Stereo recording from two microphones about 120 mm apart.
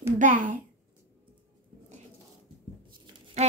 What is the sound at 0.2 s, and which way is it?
Speech, 90° right.